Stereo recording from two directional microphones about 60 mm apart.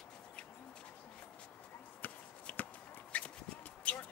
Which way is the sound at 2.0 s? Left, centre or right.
Left.